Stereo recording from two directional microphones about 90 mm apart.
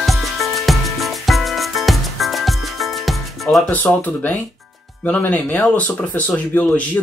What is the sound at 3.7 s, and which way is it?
Speech, 20° left (ahead or behind).